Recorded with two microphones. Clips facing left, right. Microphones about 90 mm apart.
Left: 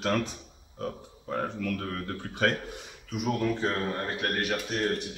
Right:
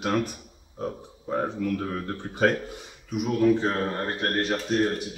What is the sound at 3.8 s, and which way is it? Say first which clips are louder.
Speech: right 3 dB; 40° right (ahead or behind).